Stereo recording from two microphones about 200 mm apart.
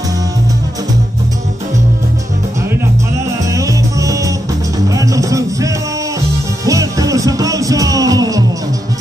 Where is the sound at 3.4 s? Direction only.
15° right (ahead or behind).